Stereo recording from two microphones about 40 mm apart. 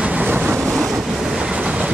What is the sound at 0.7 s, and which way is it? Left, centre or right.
Train, centre.